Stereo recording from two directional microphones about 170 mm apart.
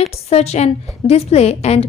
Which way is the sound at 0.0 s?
40° left (ahead or behind).